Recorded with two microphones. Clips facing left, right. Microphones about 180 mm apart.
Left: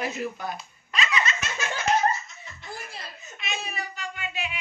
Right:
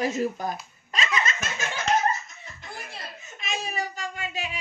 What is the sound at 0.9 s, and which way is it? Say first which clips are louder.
Giggle: even; 45° right (ahead or behind).